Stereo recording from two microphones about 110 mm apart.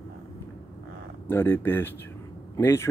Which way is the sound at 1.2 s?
20° left (ahead or behind).